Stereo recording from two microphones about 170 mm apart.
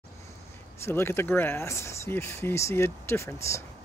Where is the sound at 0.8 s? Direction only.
15° left (ahead or behind).